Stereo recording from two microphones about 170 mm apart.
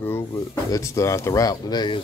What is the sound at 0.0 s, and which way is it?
Speech, 15° left (ahead or behind).